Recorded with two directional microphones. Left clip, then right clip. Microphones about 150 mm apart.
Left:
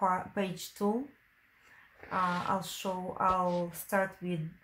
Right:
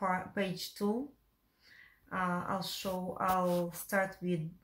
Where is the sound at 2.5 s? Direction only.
45° left (ahead or behind).